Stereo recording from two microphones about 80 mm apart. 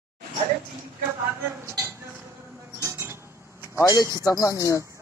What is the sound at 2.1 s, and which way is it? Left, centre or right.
Music, right.